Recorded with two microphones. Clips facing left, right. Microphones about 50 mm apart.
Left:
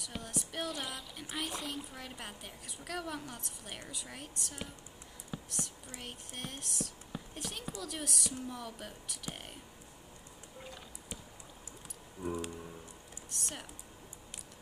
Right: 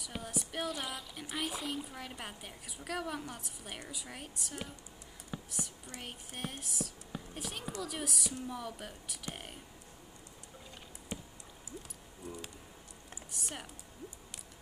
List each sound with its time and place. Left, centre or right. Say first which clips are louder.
0.0 s a woman's voice: right 1 dB; centre
5.3 s whispering: even; centre
5.9 s speech: right 1 dB; centre
11.1 s chop: right 5 dB; centre
13.4 s speech: even; centre